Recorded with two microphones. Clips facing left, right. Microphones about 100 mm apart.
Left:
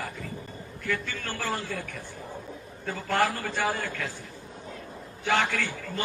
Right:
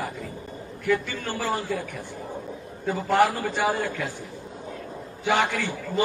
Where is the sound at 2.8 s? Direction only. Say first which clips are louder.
Right 5 dB; 15° right (ahead or behind).